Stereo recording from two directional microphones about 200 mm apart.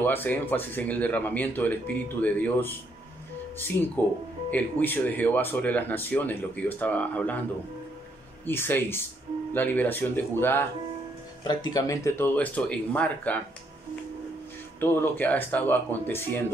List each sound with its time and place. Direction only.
0.0 s speech: 10° left (ahead or behind)
8.5 s speech: 10° left (ahead or behind)
14.8 s speech: 10° left (ahead or behind)